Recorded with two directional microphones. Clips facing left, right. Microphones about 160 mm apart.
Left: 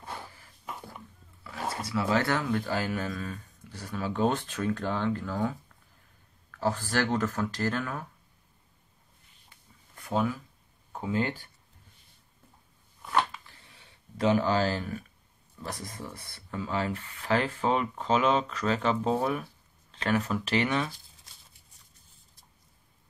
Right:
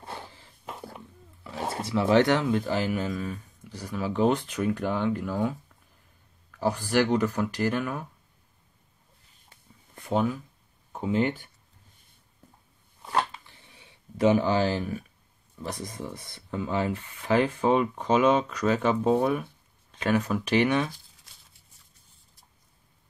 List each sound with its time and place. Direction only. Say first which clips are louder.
0.0 s a sound: right 1 dB; 25° right (ahead or behind)
1.4 s speech: right 3 dB; 25° right (ahead or behind)
9.9 s speech: right 3 dB; 20° right (ahead or behind)
14.2 s speech: right 3 dB; 15° right (ahead or behind)